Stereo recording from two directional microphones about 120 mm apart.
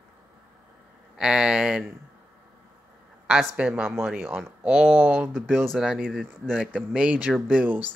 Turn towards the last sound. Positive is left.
turn(degrees=-15)  # may be behind; listen again after turning